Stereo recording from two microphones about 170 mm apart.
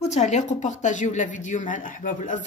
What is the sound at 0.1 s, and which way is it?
Speech, 45° left (ahead or behind).